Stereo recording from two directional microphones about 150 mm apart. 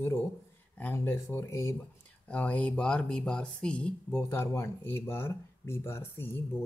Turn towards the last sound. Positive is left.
turn(degrees=15)  # may be behind; listen again after turning